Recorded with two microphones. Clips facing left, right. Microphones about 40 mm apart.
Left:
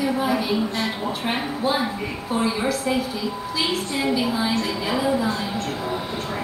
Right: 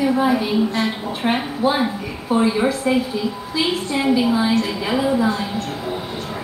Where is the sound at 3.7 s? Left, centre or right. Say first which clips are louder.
Right 6 dB; centre.